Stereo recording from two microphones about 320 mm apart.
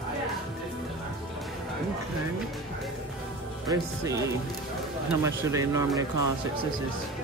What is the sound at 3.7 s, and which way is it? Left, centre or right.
Speech, centre.